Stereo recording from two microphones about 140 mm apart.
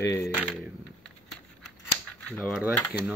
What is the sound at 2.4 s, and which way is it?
Speech, 5° left (ahead or behind).